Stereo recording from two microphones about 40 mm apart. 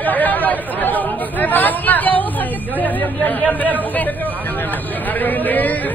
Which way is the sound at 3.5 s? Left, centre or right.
Left.